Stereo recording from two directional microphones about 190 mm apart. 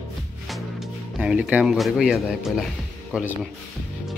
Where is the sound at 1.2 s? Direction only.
5° right (ahead or behind).